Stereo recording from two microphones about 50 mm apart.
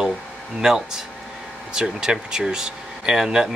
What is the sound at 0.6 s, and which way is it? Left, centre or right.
Speech, centre.